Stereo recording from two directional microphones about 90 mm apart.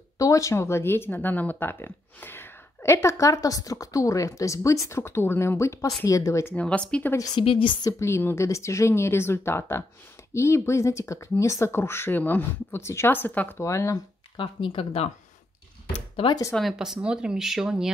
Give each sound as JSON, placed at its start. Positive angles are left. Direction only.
{"t": 0.2, "sound": "speech", "side_deg": 35}
{"t": 6.5, "sound": "speech", "side_deg": 15}
{"t": 7.3, "sound": "speech", "side_deg": 70}
{"t": 8.0, "sound": "speech", "side_deg": 25}
{"t": 13.6, "sound": "speech", "side_deg": 35}
{"t": 14.3, "sound": "speech", "side_deg": 70}
{"t": 16.5, "sound": "speech", "side_deg": 0}